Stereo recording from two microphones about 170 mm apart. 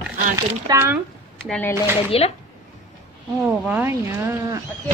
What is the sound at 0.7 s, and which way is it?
Speech, 15° right (ahead or behind).